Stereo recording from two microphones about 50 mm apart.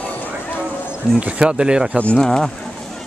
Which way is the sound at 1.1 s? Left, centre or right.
Centre.